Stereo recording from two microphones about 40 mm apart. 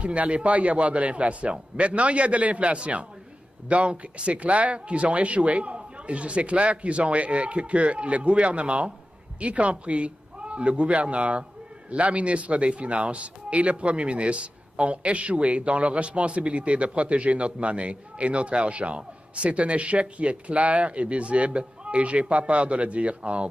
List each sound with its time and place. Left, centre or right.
0.0 s a man's voice: right